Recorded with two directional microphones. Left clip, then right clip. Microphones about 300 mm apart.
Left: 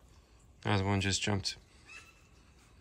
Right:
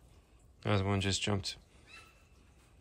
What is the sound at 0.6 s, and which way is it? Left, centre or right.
Speech, centre.